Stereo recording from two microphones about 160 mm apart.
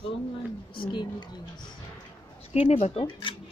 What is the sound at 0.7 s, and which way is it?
Speech, 30° left (ahead or behind).